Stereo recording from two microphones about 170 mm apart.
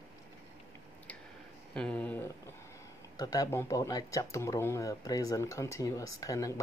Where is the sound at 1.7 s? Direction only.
5° left (ahead or behind).